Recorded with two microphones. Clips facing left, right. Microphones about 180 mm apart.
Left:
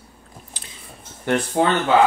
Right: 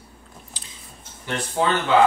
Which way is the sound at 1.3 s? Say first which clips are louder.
Left 8 dB; 60° left (ahead or behind).